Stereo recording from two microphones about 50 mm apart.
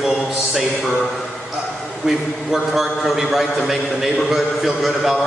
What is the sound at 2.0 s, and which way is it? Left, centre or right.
A man's voice, centre.